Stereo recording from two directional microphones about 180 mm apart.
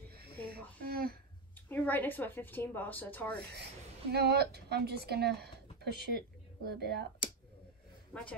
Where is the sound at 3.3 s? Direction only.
60° right (ahead or behind).